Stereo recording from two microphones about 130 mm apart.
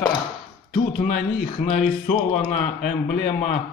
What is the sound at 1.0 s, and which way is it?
A man's voice, 65° left (ahead or behind).